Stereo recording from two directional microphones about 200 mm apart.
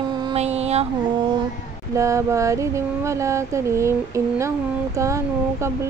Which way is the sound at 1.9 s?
15° right (ahead or behind).